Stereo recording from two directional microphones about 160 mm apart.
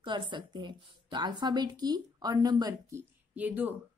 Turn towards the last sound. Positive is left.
turn(degrees=-10)  # may be behind; listen again after turning